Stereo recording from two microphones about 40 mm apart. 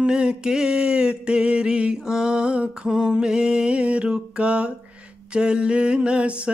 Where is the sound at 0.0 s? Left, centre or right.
Right.